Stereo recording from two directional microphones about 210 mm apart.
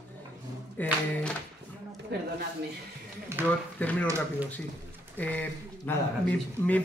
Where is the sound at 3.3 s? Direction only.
10° right (ahead or behind).